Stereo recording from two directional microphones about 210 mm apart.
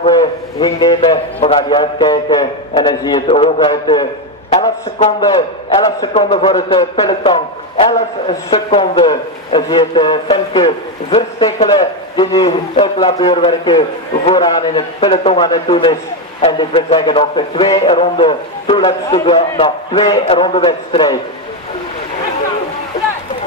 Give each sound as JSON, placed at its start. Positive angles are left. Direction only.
{"t": 0.0, "sound": "a man's voice", "side_deg": 20}
{"t": 6.1, "sound": "a man's voice", "side_deg": 25}